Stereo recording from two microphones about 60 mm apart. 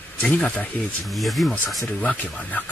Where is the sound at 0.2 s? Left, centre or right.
Left.